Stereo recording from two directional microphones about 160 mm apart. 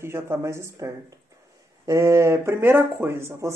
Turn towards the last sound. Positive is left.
turn(degrees=-15)  # may be behind; listen again after turning